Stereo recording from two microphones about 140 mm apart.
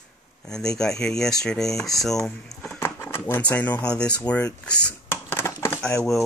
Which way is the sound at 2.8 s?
15° left (ahead or behind).